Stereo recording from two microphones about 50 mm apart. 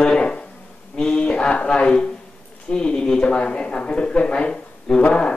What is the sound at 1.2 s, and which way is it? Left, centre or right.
Speech, left.